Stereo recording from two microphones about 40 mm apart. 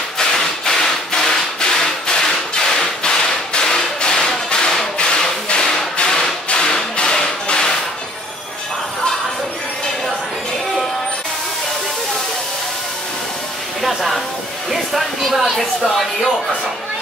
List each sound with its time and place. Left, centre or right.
0.2 s whip: centre
4.9 s music: left
13.8 s a sound: centre